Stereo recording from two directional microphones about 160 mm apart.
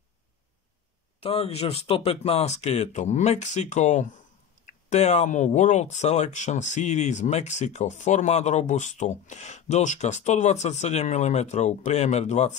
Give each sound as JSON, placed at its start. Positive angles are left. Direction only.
{"t": 1.2, "sound": "speech", "side_deg": 40}